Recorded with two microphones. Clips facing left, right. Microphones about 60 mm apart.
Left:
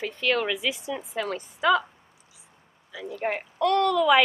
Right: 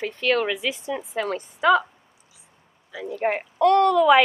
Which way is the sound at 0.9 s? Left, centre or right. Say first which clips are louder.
Right 3 dB; centre.